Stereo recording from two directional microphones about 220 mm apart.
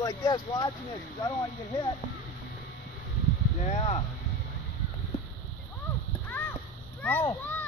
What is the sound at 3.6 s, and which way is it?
Speech, 30° left (ahead or behind).